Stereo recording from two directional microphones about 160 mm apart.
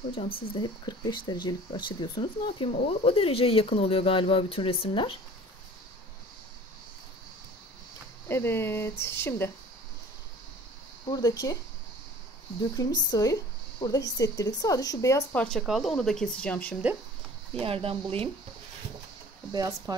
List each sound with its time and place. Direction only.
0.6 s speech: 30° left (ahead or behind)
8.3 s speech: 15° left (ahead or behind)
11.1 s speech: 25° left (ahead or behind)
12.7 s speech: 25° left (ahead or behind)
15.3 s speech: 5° left (ahead or behind)
17.6 s speech: 35° right (ahead or behind)
19.5 s speech: 25° right (ahead or behind)